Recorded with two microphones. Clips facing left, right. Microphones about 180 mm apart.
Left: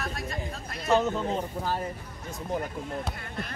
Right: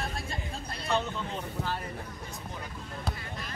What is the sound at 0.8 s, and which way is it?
Speech, 40° left (ahead or behind).